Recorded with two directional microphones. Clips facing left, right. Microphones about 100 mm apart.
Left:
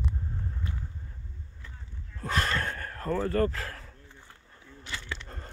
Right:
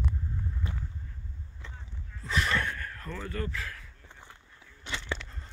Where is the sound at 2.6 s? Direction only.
40° left (ahead or behind).